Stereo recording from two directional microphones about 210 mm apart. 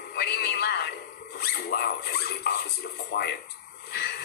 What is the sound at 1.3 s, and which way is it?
Speech, 50° left (ahead or behind).